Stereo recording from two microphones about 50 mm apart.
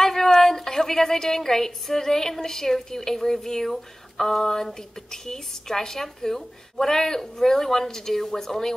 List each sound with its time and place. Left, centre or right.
0.0 s a woman's voice: centre